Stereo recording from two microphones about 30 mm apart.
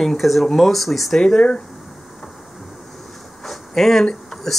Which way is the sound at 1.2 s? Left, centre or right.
Centre.